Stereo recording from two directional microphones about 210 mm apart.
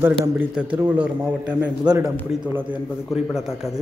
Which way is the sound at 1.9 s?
20° right (ahead or behind).